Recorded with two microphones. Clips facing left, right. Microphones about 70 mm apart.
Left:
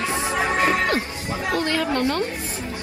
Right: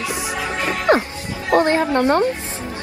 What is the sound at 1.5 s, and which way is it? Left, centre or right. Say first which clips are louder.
Speech: right 8 dB; right.